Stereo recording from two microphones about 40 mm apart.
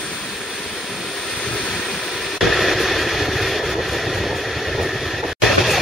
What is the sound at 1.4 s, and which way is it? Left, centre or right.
Vehicle, centre.